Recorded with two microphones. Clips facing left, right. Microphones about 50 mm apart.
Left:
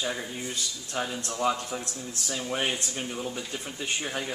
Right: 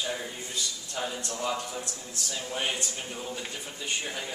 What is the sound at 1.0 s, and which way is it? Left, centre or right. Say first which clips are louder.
Speech: left 2 dB; left.